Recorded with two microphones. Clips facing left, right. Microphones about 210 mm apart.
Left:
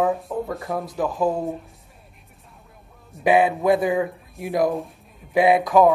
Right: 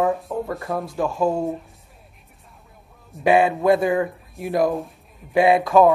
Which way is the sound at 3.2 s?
20° left (ahead or behind).